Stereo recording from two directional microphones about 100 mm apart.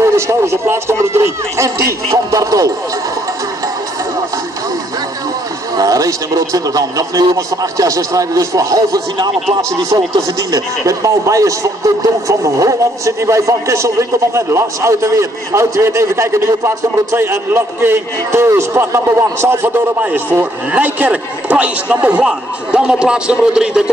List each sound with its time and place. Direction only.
0.0 s a man's voice: 30° right (ahead or behind)
5.8 s a man's voice: 35° right (ahead or behind); by 23.9 s 5° right (ahead or behind)